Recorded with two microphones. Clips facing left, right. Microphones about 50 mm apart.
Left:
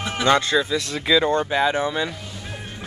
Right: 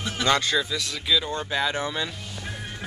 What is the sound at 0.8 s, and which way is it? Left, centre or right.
Speech, left.